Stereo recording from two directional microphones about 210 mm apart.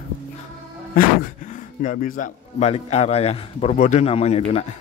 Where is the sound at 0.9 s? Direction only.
35° left (ahead or behind).